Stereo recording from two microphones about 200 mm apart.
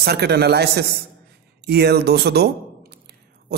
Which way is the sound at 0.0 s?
55° right (ahead or behind).